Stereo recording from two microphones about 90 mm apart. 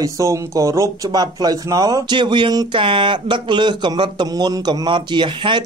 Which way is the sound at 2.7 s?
75° right (ahead or behind).